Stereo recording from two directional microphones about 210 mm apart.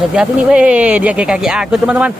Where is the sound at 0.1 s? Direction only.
5° right (ahead or behind).